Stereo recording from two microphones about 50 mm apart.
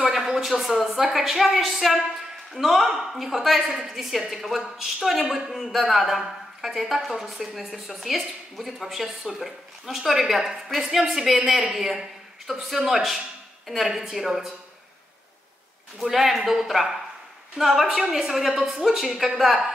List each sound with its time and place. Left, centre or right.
0.1 s a sound: centre
1.0 s a woman's voice: centre
16.0 s a woman's voice: centre